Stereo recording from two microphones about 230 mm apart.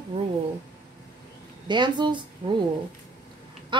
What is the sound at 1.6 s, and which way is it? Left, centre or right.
A woman's voice, centre.